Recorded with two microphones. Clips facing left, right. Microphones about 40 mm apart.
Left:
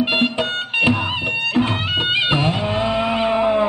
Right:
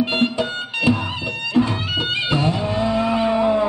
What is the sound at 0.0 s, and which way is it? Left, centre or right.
Music, left.